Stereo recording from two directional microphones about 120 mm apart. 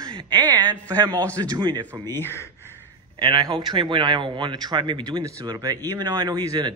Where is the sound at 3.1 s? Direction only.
40° right (ahead or behind).